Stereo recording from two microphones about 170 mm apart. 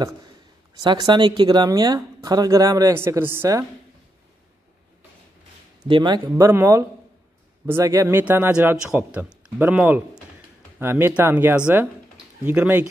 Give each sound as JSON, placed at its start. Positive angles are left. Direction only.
{"t": 0.8, "sound": "speech", "side_deg": -25}
{"t": 5.9, "sound": "speech", "side_deg": -30}